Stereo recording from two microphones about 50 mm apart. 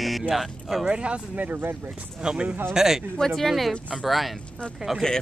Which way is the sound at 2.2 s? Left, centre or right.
Centre.